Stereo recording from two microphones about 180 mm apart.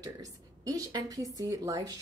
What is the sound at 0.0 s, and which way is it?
A woman's voice, 20° right (ahead or behind).